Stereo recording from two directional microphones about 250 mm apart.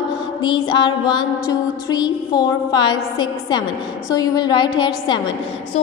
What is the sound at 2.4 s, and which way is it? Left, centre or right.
A woman's voice, centre.